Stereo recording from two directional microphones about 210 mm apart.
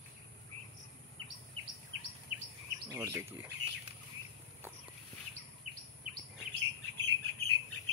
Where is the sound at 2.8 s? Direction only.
15° right (ahead or behind).